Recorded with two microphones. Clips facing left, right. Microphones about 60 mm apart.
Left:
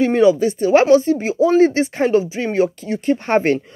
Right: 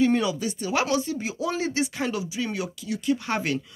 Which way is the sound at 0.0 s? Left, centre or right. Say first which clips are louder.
Left 9 dB; left.